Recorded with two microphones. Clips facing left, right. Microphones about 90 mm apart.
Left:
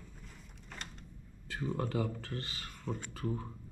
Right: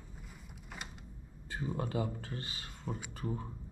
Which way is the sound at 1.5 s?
15° right (ahead or behind).